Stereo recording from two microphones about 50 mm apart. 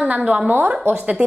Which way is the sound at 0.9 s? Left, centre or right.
Centre.